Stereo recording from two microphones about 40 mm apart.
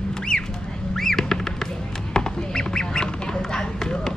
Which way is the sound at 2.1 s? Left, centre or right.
Centre.